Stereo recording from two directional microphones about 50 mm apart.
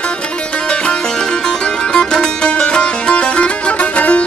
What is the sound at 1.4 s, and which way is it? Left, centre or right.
Music, centre.